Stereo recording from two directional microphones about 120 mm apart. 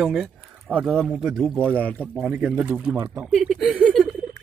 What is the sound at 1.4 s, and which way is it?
Speech, 5° left (ahead or behind).